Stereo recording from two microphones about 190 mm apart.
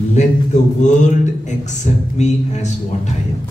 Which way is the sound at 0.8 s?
40° left (ahead or behind).